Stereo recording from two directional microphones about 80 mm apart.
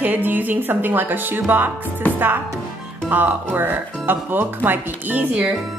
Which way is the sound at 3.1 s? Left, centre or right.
Right.